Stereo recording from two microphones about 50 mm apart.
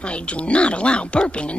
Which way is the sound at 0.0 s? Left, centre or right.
Left.